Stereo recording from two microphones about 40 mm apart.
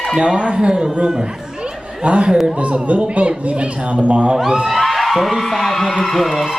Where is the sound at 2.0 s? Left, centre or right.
Right.